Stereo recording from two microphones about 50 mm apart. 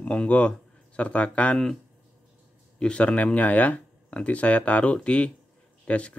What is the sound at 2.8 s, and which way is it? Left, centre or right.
Speech, left.